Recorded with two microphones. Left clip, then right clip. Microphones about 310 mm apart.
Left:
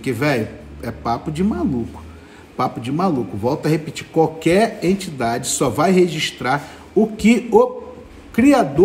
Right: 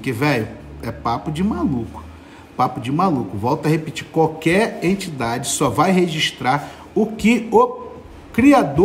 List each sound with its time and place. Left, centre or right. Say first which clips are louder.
0.0 s a man's voice: even; centre